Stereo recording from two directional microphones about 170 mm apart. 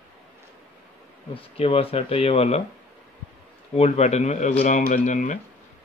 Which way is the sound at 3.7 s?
40° left (ahead or behind).